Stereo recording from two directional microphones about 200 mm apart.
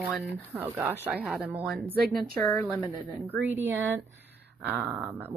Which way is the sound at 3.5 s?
10° right (ahead or behind).